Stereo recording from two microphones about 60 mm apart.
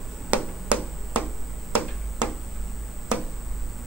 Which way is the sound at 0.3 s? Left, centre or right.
Right.